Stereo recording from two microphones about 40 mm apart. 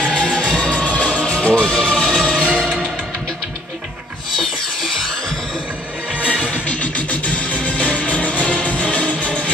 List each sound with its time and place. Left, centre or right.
0.0 s music: left
4.4 s music: centre
6.1 s music: right
6.6 s music: left